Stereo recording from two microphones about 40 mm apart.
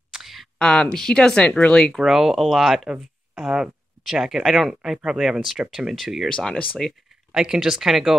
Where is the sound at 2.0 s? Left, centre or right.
Centre.